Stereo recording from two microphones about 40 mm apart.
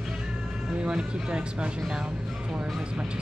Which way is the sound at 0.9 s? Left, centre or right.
Right.